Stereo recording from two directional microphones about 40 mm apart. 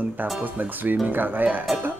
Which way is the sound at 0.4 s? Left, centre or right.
Right.